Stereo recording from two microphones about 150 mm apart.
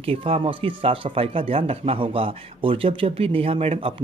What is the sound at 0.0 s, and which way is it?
Speech, 40° right (ahead or behind).